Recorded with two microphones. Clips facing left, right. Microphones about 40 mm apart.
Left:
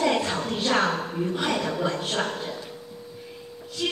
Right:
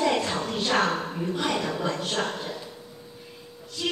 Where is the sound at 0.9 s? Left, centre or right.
Centre.